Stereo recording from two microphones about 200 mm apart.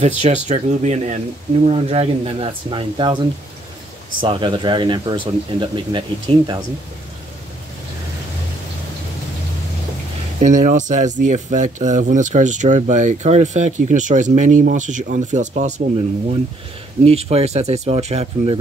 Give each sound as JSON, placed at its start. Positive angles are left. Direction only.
{"t": 0.0, "sound": "speech", "side_deg": -35}
{"t": 10.4, "sound": "speech", "side_deg": -40}
{"t": 17.0, "sound": "speech", "side_deg": -30}